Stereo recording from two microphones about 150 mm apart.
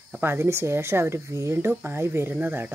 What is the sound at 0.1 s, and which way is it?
Speech, 15° right (ahead or behind).